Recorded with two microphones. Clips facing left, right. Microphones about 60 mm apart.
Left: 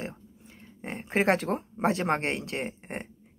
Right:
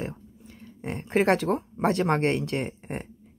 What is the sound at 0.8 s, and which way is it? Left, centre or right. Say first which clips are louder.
Speech: right 3 dB; centre.